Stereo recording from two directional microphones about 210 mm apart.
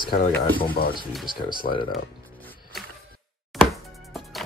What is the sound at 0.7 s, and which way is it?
Speech, 45° left (ahead or behind).